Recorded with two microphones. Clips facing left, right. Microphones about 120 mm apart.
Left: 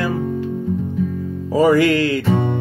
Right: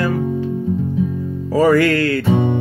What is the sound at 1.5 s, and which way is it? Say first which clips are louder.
Music: even; 15° left (ahead or behind).